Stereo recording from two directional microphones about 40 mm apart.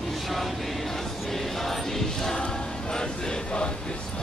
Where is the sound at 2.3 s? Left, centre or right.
Centre.